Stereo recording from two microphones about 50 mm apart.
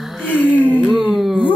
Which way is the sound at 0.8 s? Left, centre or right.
Right.